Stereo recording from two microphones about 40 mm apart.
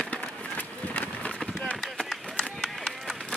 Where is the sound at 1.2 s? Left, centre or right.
Left.